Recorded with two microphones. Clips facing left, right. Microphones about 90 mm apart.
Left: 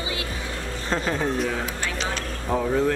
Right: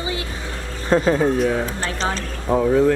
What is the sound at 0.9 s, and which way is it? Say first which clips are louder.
Speech: right 8 dB; 10° right (ahead or behind).